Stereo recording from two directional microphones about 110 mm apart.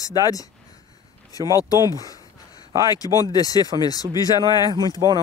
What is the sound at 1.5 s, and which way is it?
Speech, 35° left (ahead or behind).